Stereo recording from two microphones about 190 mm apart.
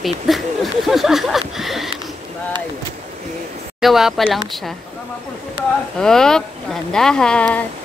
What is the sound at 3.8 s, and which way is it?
Speech, centre (ahead or behind).